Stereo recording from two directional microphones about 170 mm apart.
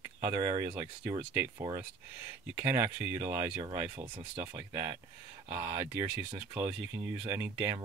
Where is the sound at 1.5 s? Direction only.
25° right (ahead or behind).